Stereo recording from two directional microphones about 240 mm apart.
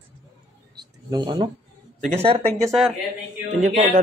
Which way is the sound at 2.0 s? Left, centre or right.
Right.